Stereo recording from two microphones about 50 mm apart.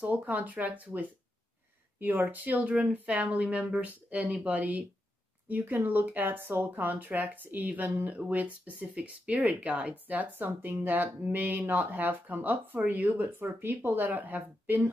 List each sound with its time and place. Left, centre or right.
0.0 s speech: right
14.0 s speech: right